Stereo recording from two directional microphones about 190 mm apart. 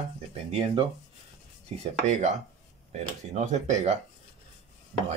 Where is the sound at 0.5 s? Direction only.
30° right (ahead or behind).